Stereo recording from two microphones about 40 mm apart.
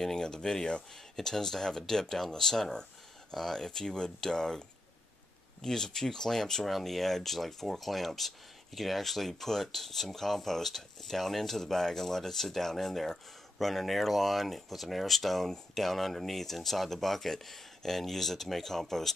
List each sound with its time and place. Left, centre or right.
0.0 s speech: centre